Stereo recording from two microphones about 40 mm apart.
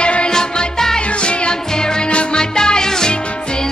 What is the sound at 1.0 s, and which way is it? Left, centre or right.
Music, left.